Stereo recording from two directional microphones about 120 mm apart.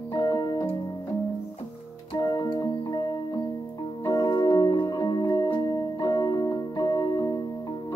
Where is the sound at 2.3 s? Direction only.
30° left (ahead or behind).